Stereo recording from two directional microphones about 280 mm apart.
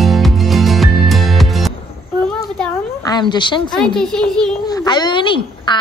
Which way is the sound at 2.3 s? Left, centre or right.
Centre.